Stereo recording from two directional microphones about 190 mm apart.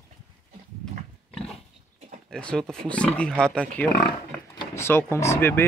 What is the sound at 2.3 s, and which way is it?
Speech, 5° left (ahead or behind).